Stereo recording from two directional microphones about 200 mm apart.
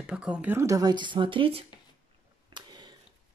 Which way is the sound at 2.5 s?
20° right (ahead or behind).